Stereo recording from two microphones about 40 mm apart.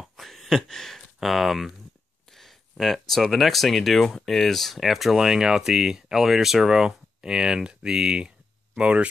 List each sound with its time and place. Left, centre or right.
0.2 s a sound: centre
1.2 s speech: centre
2.8 s speech: centre; by 8.3 s right
8.7 s speech: right